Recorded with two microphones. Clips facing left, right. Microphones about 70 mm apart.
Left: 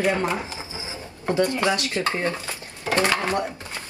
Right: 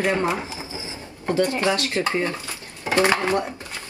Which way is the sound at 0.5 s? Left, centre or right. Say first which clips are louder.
Right 1 dB; left.